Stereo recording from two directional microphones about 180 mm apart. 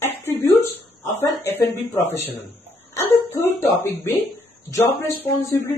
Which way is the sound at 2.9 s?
10° left (ahead or behind).